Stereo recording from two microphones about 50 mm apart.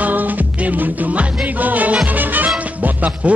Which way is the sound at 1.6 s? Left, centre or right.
Right.